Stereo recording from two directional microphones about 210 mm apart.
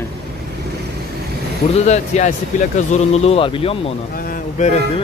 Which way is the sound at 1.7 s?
30° left (ahead or behind).